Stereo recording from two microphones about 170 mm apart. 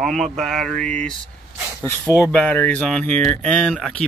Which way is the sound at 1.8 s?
15° left (ahead or behind).